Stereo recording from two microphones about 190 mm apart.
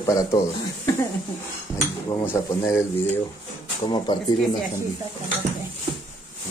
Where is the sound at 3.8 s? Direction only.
25° left (ahead or behind).